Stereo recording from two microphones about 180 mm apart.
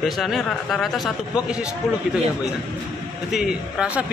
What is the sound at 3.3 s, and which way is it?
Speech, 5° right (ahead or behind).